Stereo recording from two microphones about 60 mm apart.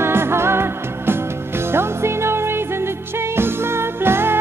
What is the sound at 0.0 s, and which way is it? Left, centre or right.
Music, right.